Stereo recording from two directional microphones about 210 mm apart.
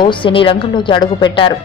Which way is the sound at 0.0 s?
25° left (ahead or behind).